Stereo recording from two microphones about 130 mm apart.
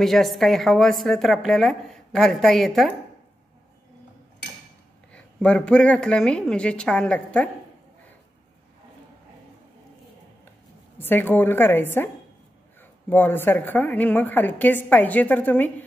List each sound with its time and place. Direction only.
0.0 s a woman's voice: centre (ahead or behind)
5.1 s a woman's voice: 10° left (ahead or behind)
11.0 s a woman's voice: 15° left (ahead or behind)
13.1 s a woman's voice: 15° left (ahead or behind)